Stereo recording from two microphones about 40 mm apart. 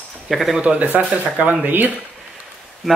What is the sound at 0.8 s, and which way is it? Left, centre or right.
Speech, right.